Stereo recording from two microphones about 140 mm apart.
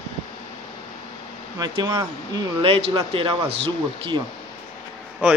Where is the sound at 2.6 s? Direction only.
40° right (ahead or behind).